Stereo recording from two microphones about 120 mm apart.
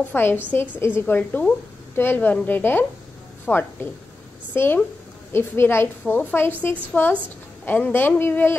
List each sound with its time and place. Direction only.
0.0 s a woman's voice: 15° left (ahead or behind)